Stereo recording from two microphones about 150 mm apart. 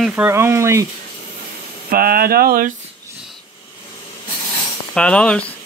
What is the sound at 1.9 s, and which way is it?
Speech, 80° right.